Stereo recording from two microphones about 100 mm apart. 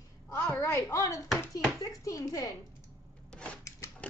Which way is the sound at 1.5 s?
35° left (ahead or behind).